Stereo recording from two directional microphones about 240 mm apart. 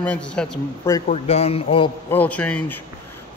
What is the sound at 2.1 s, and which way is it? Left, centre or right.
Speech, centre.